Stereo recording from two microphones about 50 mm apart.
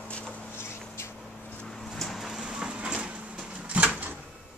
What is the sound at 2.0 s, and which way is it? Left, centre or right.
Vehicle, centre.